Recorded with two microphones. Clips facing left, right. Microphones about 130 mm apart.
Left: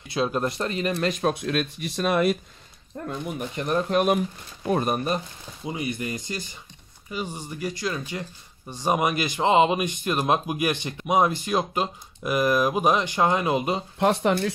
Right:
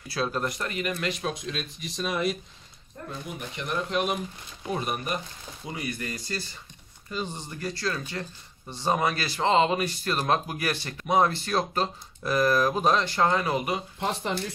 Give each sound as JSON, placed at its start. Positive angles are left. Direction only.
{"t": 0.1, "sound": "speech", "side_deg": 20}
{"t": 1.3, "sound": "speech", "side_deg": 60}
{"t": 3.3, "sound": "speech", "side_deg": 40}
{"t": 5.6, "sound": "speech", "side_deg": 20}
{"t": 13.9, "sound": "speech", "side_deg": 70}